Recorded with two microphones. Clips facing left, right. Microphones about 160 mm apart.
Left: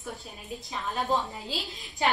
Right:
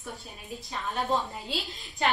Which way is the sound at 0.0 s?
Centre (ahead or behind).